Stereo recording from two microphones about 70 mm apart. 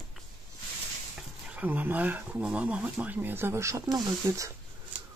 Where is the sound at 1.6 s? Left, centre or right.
Right.